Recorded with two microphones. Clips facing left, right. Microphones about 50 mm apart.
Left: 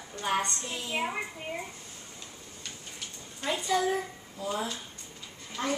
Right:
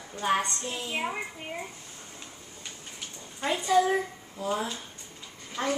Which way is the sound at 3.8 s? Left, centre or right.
Right.